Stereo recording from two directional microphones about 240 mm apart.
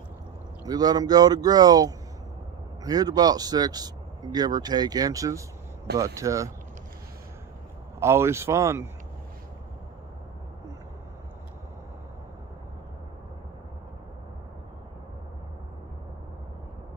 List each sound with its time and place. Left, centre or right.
0.7 s speech: centre
8.0 s speech: centre